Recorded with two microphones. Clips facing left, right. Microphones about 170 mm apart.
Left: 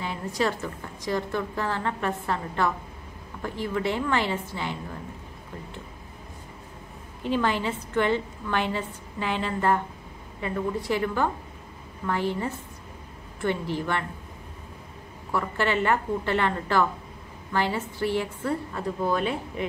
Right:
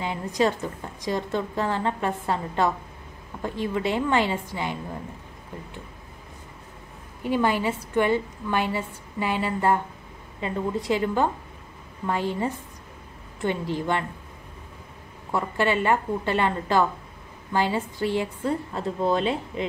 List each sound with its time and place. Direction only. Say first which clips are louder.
0.0 s a woman's voice: right 3 dB; 20° right (ahead or behind)
7.2 s a woman's voice: right 2 dB; 10° right (ahead or behind)
15.3 s a woman's voice: right 2 dB; 15° right (ahead or behind)